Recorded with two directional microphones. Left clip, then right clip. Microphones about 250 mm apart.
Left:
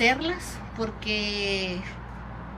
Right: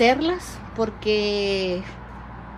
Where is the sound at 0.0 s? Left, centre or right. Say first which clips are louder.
Right 5 dB; centre.